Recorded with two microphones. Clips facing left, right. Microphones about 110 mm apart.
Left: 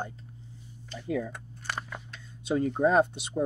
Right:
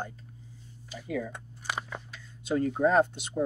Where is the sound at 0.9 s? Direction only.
10° right (ahead or behind).